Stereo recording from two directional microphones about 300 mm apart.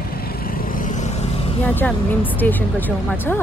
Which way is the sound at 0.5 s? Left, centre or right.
Left.